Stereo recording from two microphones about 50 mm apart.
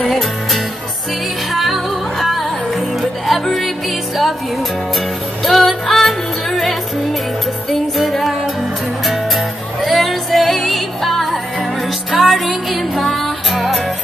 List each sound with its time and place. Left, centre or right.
1.5 s music: centre
5.4 s music: centre